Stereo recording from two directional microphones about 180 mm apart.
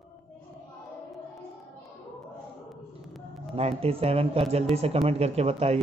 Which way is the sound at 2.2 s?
Centre (ahead or behind).